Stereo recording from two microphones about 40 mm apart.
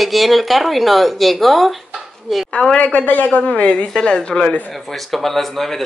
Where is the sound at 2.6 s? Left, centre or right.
Left.